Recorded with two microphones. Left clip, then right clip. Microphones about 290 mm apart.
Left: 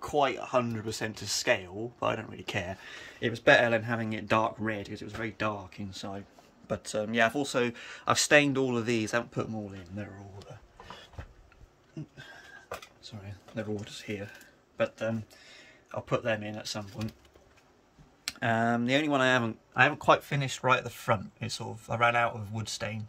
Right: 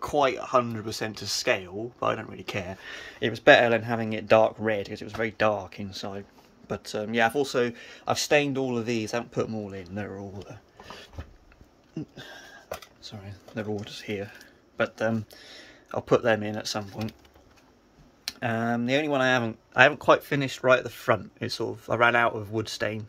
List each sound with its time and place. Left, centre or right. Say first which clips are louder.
0.0 s speech: right 4 dB; centre
12.2 s a sound: right 4 dB; right
13.0 s speech: right 4 dB; centre
14.8 s speech: right 4 dB; centre
18.2 s speech: left 1 dB; centre